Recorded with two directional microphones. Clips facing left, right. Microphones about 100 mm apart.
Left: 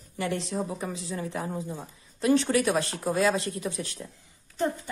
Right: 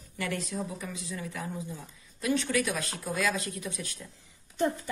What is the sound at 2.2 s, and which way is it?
A woman's voice, 35° left (ahead or behind).